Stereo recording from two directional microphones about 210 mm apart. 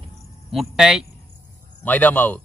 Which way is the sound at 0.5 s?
Centre (ahead or behind).